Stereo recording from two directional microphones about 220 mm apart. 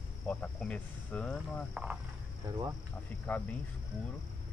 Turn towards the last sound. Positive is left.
turn(degrees=5)  # may be behind; listen again after turning